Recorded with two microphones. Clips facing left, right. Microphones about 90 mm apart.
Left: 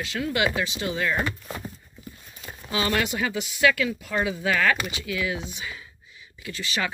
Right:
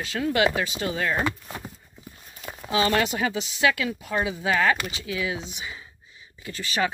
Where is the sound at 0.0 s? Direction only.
35° right (ahead or behind).